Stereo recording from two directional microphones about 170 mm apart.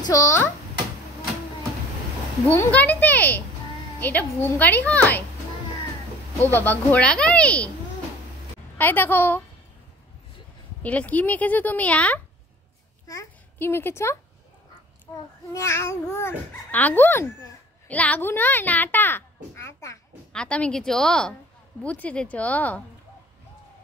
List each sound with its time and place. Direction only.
0.1 s speech: 20° left (ahead or behind)
2.5 s speech: 10° left (ahead or behind)
6.4 s speech: 10° left (ahead or behind)
8.7 s speech: 10° left (ahead or behind)
10.8 s speech: 10° left (ahead or behind)
13.0 s a child's voice: 20° left (ahead or behind)
15.5 s speech: 15° left (ahead or behind)
20.3 s a woman's voice: 5° left (ahead or behind)